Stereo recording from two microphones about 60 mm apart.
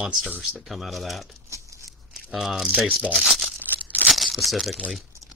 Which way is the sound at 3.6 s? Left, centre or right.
Right.